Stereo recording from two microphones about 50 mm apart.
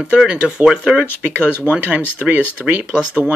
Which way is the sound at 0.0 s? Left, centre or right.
Centre.